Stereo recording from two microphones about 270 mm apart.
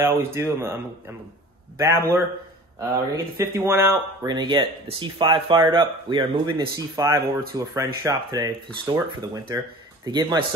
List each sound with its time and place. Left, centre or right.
0.0 s speech: centre
1.8 s speech: centre